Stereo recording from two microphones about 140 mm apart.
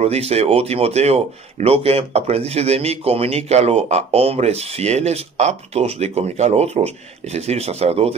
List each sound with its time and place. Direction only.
0.0 s speech: 50° right (ahead or behind)